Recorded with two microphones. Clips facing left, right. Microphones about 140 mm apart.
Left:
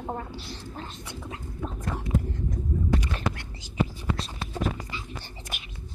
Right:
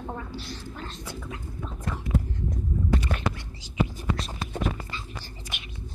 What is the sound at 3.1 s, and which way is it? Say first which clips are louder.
Whispering: right 3 dB; 60° right (ahead or behind).